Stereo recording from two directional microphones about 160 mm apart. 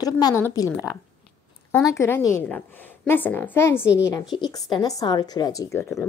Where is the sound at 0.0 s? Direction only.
20° left (ahead or behind).